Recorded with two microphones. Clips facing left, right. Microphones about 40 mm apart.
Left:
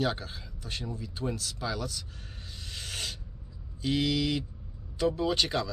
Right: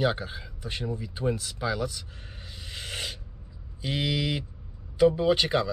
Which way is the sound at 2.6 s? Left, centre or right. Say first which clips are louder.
Right 2 dB; centre.